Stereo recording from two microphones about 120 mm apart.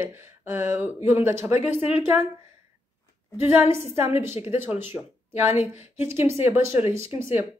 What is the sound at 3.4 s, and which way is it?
A woman's voice, 20° right (ahead or behind).